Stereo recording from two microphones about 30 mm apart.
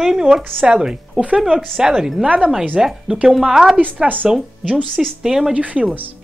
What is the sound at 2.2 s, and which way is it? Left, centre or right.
Speech, right.